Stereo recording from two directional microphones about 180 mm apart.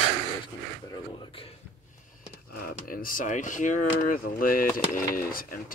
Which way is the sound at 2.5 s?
55° left (ahead or behind).